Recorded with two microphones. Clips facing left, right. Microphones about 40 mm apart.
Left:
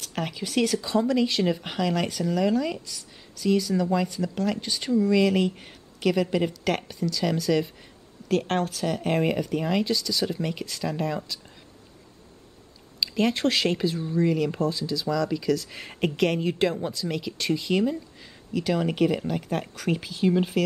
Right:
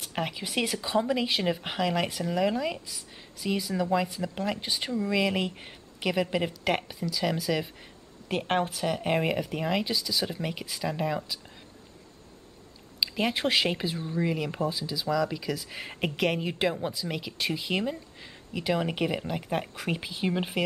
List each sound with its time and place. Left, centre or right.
0.0 s speech: centre
13.0 s speech: centre